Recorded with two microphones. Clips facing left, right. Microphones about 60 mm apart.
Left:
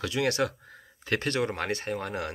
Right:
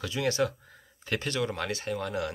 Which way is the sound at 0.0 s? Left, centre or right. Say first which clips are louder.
Left 1 dB; left.